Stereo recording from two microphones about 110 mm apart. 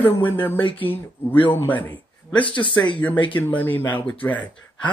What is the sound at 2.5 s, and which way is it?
Speech, 50° left (ahead or behind).